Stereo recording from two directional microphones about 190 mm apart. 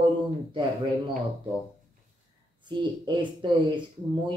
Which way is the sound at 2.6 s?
25° right (ahead or behind).